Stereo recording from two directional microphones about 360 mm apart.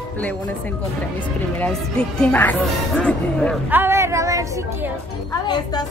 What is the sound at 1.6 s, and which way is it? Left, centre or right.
A woman's voice, centre.